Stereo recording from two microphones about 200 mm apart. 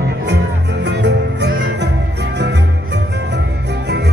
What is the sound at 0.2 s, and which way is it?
Music, 55° right (ahead or behind).